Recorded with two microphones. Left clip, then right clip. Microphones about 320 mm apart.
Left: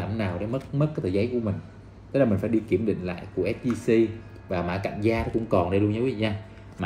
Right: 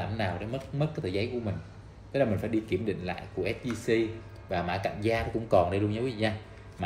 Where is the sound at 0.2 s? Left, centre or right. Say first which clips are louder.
Left 3 dB; right.